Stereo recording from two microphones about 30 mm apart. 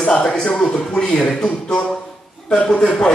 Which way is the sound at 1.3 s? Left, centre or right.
Left.